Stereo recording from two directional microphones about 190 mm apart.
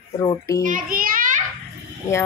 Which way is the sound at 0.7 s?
45° right (ahead or behind).